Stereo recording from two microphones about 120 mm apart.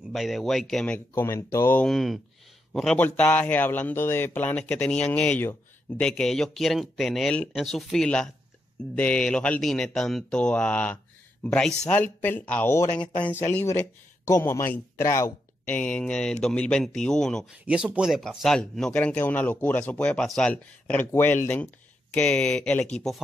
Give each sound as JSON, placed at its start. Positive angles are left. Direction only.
{"t": 0.1, "sound": "speech", "side_deg": 0}
{"t": 1.1, "sound": "speech", "side_deg": 20}
{"t": 1.9, "sound": "speech", "side_deg": 0}
{"t": 3.0, "sound": "speech", "side_deg": 15}
{"t": 15.7, "sound": "speech", "side_deg": 10}
{"t": 17.6, "sound": "speech", "side_deg": -10}
{"t": 18.3, "sound": "speech", "side_deg": 5}